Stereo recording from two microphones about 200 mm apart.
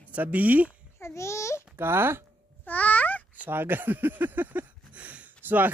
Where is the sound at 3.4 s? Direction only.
10° right (ahead or behind).